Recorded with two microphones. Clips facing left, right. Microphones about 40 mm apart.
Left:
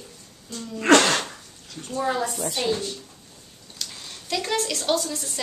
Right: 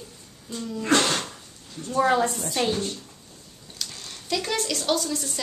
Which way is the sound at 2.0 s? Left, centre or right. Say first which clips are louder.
Right 4 dB; right.